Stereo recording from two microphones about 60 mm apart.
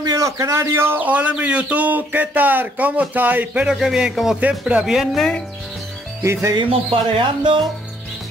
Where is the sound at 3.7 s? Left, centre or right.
Centre.